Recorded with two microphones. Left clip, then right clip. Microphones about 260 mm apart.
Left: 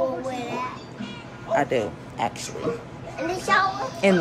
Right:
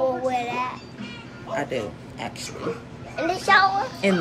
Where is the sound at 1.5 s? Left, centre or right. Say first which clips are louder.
Left 5 dB; centre.